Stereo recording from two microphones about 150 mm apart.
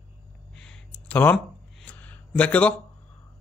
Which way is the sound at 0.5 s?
5° left (ahead or behind).